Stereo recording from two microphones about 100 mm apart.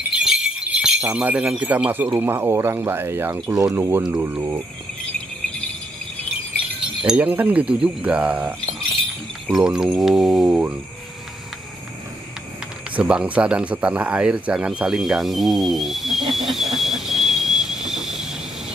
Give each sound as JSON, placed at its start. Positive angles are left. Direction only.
{"t": 0.0, "sound": "glass", "side_deg": -10}
{"t": 2.1, "sound": "speech", "side_deg": -25}
{"t": 7.2, "sound": "speech", "side_deg": -20}
{"t": 12.9, "sound": "speech", "side_deg": -10}